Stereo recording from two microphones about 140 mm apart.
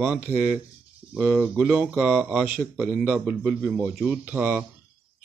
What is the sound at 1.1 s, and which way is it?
A man's voice, 10° right (ahead or behind).